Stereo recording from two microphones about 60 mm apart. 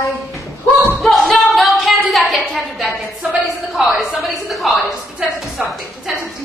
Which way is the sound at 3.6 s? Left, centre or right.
Centre.